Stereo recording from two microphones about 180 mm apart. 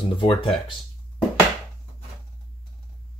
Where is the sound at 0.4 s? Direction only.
30° left (ahead or behind).